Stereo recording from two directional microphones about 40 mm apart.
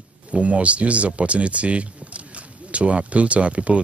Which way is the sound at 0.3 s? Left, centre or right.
Right.